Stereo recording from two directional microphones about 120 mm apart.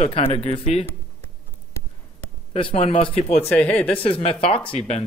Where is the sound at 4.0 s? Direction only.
55° left (ahead or behind).